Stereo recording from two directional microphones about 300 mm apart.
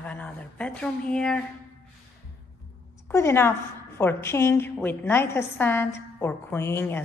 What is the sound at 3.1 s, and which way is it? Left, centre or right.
A woman's voice, centre.